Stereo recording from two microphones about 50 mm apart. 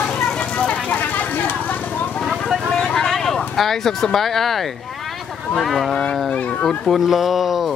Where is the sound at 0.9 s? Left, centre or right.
Left.